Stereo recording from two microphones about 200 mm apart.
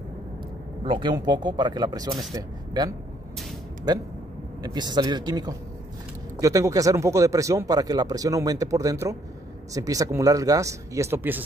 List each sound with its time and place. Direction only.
0.8 s speech: 25° right (ahead or behind)